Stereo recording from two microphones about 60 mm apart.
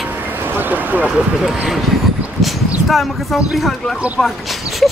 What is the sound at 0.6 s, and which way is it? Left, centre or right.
Speech, right.